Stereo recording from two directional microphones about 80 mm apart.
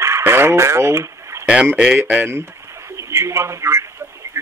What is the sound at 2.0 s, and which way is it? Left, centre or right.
Speech, right.